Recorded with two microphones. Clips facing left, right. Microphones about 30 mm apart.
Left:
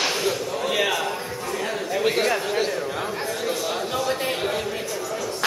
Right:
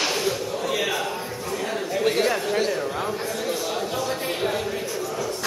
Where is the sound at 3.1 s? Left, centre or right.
Left.